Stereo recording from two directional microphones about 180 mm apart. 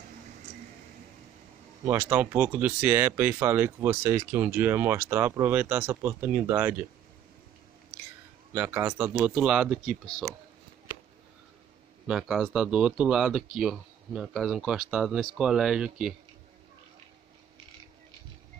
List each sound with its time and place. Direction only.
1.9 s speech: 10° right (ahead or behind)
8.5 s speech: 10° right (ahead or behind)
12.1 s speech: centre (ahead or behind)